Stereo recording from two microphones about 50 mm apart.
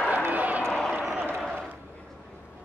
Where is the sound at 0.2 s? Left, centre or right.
Right.